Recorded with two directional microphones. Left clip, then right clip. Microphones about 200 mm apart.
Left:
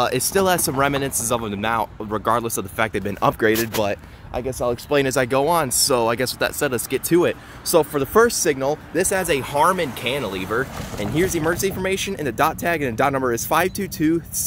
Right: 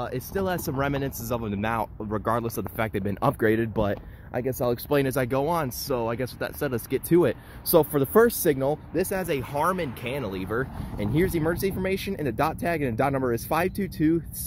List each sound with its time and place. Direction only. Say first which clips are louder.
0.0 s speech: left 10 dB; 20° left (ahead or behind); by 3.7 s 10° right (ahead or behind)
3.8 s speech: left 5 dB; 20° right (ahead or behind)
4.9 s speech: left 7 dB; centre (ahead or behind)
6.9 s speech: left 2 dB; 10° right (ahead or behind)
8.9 s speech: left 7 dB; centre (ahead or behind)